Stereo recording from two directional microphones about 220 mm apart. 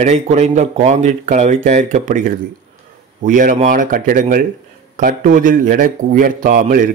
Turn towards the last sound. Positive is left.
turn(degrees=-40)  # may be behind; listen again after turning